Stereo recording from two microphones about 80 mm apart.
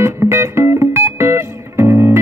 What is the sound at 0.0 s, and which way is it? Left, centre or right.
Music, right.